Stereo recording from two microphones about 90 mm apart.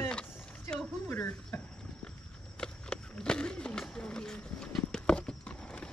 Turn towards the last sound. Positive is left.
turn(degrees=10)  # may be behind; listen again after turning